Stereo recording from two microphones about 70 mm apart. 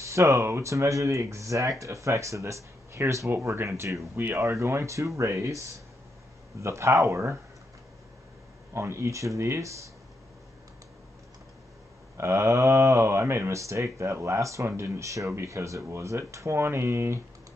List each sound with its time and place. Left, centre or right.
0.0 s speech: right
8.7 s speech: right
12.2 s speech: right